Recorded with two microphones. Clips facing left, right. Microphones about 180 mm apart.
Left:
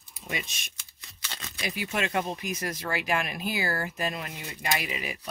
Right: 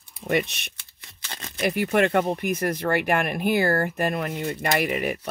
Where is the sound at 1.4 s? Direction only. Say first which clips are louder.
Right 10 dB; 60° right (ahead or behind).